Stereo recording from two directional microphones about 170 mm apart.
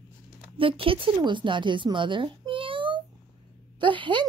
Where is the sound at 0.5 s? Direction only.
30° right (ahead or behind).